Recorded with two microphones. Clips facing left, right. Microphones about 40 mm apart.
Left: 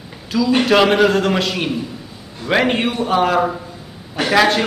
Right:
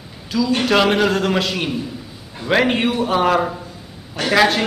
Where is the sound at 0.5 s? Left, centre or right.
Centre.